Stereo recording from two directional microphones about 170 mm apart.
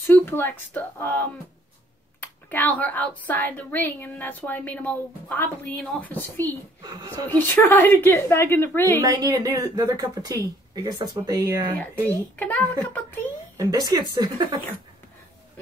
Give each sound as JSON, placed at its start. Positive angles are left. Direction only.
{"t": 0.0, "sound": "a woman's voice", "side_deg": 15}
{"t": 6.8, "sound": "speech", "side_deg": -25}
{"t": 7.2, "sound": "a woman's voice", "side_deg": 10}
{"t": 9.0, "sound": "speech", "side_deg": -20}
{"t": 11.8, "sound": "a woman's voice", "side_deg": 10}
{"t": 13.6, "sound": "speech", "side_deg": -20}